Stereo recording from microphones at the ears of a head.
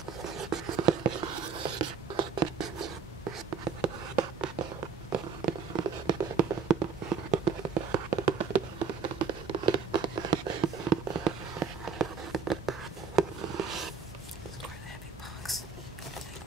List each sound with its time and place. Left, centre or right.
0.2 s writing: right